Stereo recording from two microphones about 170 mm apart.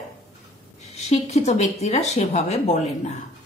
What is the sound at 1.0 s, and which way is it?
Speech, 40° left (ahead or behind).